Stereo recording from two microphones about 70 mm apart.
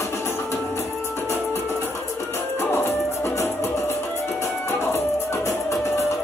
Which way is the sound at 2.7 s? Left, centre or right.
Left.